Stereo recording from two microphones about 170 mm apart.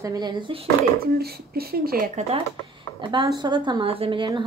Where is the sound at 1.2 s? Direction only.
65° right (ahead or behind).